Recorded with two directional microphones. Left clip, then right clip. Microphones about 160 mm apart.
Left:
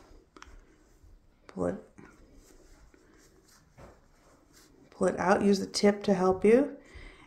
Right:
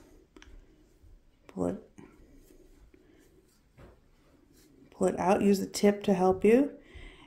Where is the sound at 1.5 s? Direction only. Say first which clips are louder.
Even; 25° right (ahead or behind).